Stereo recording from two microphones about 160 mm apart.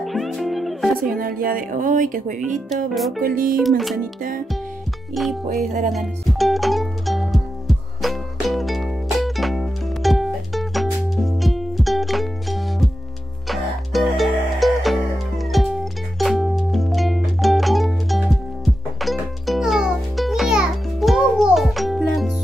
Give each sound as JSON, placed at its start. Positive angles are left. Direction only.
{"t": 0.0, "sound": "music", "side_deg": 0}
{"t": 1.1, "sound": "speech", "side_deg": -65}
{"t": 3.5, "sound": "speech", "side_deg": 0}
{"t": 5.2, "sound": "speech", "side_deg": 0}
{"t": 5.7, "sound": "music", "side_deg": -50}
{"t": 5.9, "sound": "music", "side_deg": 0}